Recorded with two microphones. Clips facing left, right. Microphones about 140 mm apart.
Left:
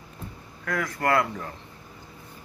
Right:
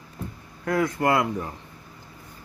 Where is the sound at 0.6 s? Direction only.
25° right (ahead or behind).